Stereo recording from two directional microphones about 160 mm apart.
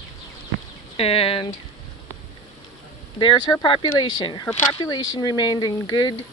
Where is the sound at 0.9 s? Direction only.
35° left (ahead or behind).